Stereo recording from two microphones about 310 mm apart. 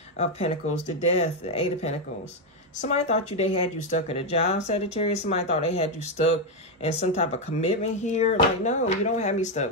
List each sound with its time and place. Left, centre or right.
0.2 s speech: left